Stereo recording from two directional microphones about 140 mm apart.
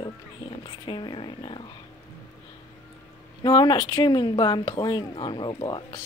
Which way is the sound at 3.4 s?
30° left (ahead or behind).